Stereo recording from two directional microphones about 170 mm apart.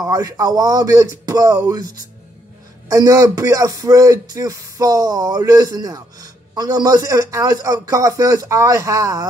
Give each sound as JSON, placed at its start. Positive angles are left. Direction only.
{"t": 0.0, "sound": "speech", "side_deg": -20}
{"t": 2.9, "sound": "speech", "side_deg": -20}